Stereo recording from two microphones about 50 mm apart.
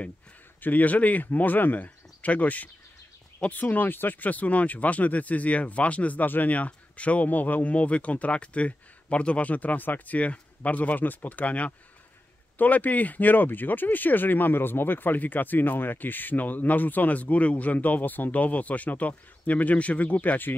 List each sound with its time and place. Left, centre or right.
0.6 s speech: left